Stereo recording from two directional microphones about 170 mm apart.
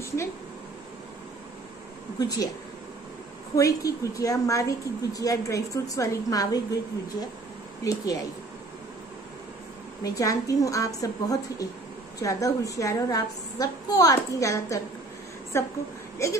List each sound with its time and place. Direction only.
2.1 s a woman's voice: 20° left (ahead or behind)
3.5 s a woman's voice: 20° left (ahead or behind)
7.8 s a woman's voice: 20° left (ahead or behind)
10.0 s a woman's voice: 20° left (ahead or behind)